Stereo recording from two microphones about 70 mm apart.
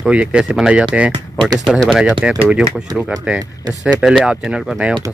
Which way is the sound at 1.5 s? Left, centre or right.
Centre.